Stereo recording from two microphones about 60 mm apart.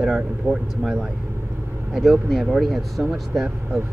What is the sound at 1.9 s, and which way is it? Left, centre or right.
Speech, centre.